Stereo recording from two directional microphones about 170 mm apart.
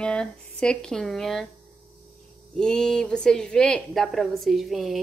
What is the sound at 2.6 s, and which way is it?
Speech, 5° left (ahead or behind).